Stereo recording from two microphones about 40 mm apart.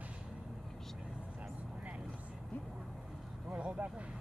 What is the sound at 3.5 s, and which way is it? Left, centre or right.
Vehicle, right.